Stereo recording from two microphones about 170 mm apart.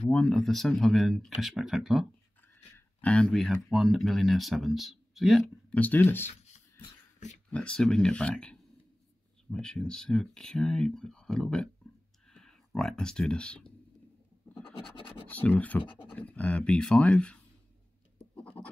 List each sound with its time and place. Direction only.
0.1 s speech: 5° left (ahead or behind)
2.4 s speech: 10° left (ahead or behind)
7.4 s speech: 5° left (ahead or behind)
12.3 s a sound: 5° left (ahead or behind)
14.8 s scratch: 30° left (ahead or behind)
15.2 s speech: 10° left (ahead or behind)
18.4 s scratch: 10° left (ahead or behind)